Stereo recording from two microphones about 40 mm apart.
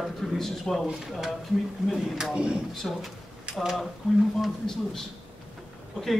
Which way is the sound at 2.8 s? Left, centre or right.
Centre.